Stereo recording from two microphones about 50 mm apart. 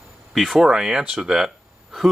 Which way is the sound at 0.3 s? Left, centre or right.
Centre.